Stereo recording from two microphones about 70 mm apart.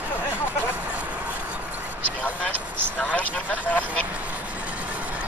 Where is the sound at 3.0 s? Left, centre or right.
Left.